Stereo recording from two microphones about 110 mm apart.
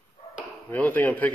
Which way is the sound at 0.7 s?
15° left (ahead or behind).